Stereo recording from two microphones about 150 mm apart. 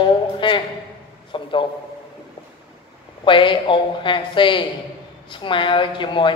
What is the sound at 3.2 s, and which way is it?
A man's voice, 35° left (ahead or behind).